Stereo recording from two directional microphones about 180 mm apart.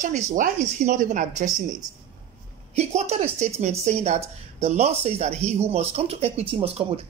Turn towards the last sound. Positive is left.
turn(degrees=-30)  # may be behind; listen again after turning